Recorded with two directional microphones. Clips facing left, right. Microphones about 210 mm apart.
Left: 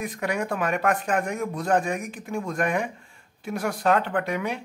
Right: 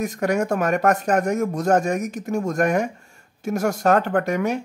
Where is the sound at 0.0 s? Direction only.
45° right (ahead or behind).